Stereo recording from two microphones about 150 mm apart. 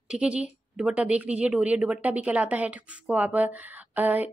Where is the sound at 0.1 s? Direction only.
5° right (ahead or behind).